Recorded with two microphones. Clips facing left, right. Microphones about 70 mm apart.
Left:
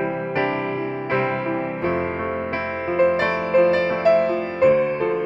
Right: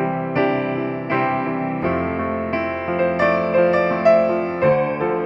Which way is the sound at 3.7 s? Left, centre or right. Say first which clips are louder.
Right 2 dB; right.